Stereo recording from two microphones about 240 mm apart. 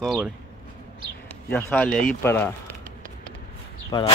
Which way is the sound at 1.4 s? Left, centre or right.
Centre.